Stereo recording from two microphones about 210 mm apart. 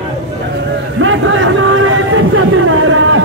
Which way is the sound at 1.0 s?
70° right (ahead or behind).